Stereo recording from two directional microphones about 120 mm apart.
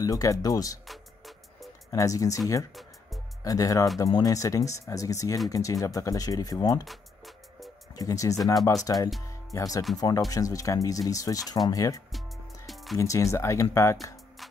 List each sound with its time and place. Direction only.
0.0 s speech: 30° left (ahead or behind)
0.8 s music: centre (ahead or behind)
1.9 s speech: 30° left (ahead or behind)
2.7 s music: centre (ahead or behind)
3.4 s speech: 30° left (ahead or behind)
6.8 s music: centre (ahead or behind)
7.9 s speech: 30° left (ahead or behind)
9.3 s music: 30° left (ahead or behind)
9.9 s speech: 30° left (ahead or behind)
12.6 s music: centre (ahead or behind)
12.9 s speech: 25° left (ahead or behind)